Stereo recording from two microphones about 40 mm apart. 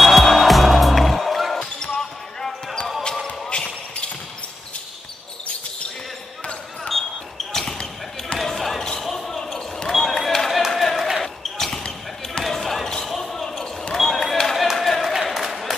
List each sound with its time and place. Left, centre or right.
0.0 s music: centre
2.0 s basketball bounce: centre
3.3 s basketball bounce: left
6.9 s basketball bounce: centre
9.4 s basketball bounce: centre
9.9 s a sound: centre
11.5 s basketball bounce: centre
14.6 s a sound: centre